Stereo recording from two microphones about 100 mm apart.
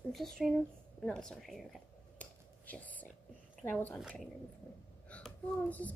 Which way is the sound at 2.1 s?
15° left (ahead or behind).